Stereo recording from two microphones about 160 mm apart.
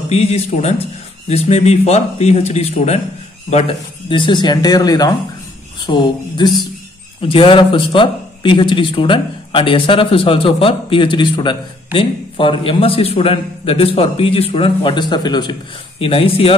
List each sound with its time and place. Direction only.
0.1 s speech: 40° left (ahead or behind)